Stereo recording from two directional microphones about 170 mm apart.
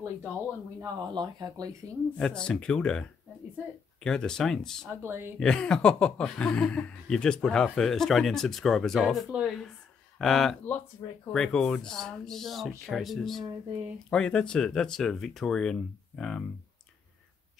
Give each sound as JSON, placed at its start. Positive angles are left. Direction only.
{"t": 0.7, "sound": "speech", "side_deg": -25}
{"t": 2.1, "sound": "speech", "side_deg": 5}
{"t": 4.8, "sound": "speech", "side_deg": -15}
{"t": 5.4, "sound": "speech", "side_deg": 5}